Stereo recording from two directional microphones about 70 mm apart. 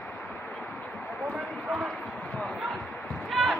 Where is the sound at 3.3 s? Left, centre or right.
Centre.